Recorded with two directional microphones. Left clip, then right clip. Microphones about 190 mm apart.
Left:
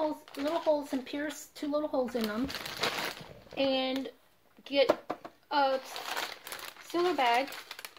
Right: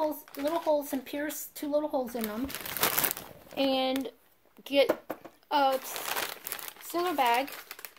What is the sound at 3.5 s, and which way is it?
Speech, 45° right (ahead or behind).